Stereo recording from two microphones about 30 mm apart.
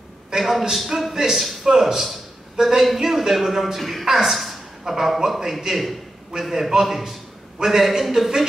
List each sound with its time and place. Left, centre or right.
0.4 s a man's voice: centre
1.1 s a man's voice: centre